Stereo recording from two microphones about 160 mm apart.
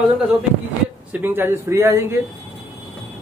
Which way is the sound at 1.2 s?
15° right (ahead or behind).